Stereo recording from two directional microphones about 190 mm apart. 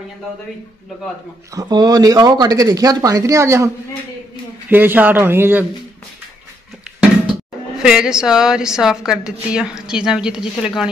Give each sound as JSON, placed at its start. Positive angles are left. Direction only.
{"t": 1.5, "sound": "speech", "side_deg": -20}
{"t": 7.8, "sound": "a woman's voice", "side_deg": -5}